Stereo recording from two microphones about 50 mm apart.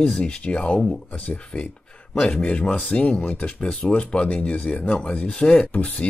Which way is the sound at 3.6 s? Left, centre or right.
Centre.